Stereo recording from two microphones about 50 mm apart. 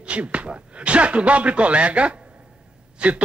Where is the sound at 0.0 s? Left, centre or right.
Right.